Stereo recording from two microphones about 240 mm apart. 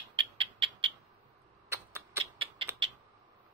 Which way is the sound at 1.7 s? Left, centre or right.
Centre.